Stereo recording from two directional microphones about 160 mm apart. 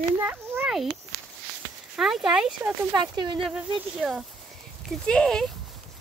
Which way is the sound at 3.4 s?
Centre (ahead or behind).